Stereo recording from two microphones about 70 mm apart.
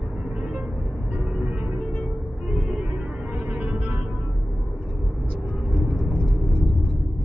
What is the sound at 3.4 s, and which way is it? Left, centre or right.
Music, right.